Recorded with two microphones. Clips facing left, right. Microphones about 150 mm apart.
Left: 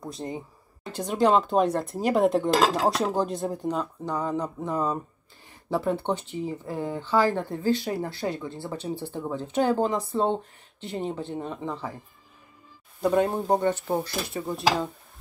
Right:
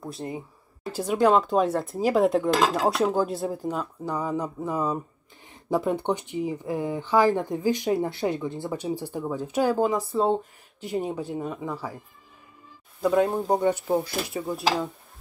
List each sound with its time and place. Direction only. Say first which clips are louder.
0.0 s speech: even; 5° right (ahead or behind)
5.5 s speech: right 1 dB; 20° right (ahead or behind)
13.0 s speech: right 1 dB; centre (ahead or behind)